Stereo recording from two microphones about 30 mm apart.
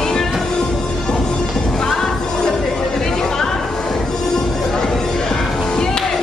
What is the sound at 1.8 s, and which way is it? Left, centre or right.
Music, centre.